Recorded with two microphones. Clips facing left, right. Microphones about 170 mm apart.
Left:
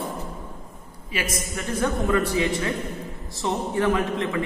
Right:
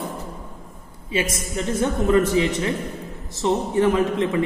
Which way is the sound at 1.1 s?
25° right (ahead or behind).